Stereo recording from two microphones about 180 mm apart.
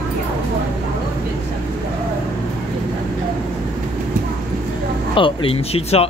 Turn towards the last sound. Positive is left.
turn(degrees=35)  # may be behind; listen again after turning